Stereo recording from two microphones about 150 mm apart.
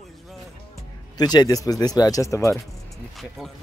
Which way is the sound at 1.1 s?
25° left (ahead or behind).